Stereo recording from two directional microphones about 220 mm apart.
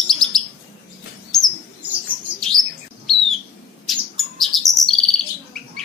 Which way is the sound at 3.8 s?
Centre (ahead or behind).